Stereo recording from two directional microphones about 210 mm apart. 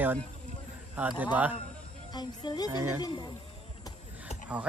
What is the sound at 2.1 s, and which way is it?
Speech, 20° left (ahead or behind).